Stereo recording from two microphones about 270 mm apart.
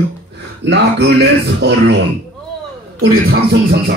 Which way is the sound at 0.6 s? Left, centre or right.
Right.